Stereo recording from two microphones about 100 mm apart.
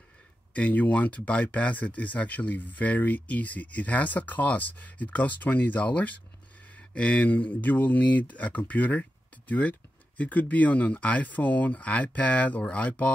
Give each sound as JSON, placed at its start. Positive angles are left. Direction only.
{"t": 0.5, "sound": "speech", "side_deg": 15}